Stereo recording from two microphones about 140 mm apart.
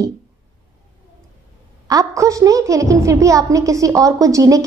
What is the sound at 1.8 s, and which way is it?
A woman's voice, 25° right (ahead or behind).